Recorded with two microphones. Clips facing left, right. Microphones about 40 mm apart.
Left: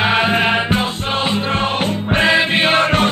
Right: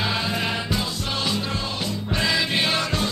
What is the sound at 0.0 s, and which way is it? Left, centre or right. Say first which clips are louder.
Music: left 10 dB; left.